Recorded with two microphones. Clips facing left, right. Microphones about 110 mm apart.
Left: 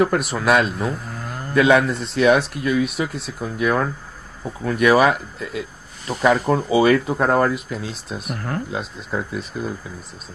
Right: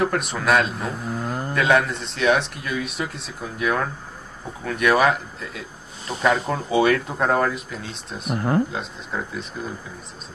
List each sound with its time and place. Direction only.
0.0 s speech: centre (ahead or behind)
8.4 s speech: 20° right (ahead or behind)
8.6 s speech: centre (ahead or behind)